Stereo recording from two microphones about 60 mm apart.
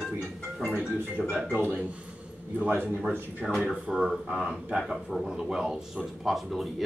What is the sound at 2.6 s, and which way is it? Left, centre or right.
Speech, right.